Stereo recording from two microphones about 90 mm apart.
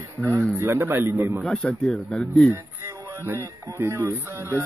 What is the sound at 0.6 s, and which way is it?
Speech, 25° right (ahead or behind).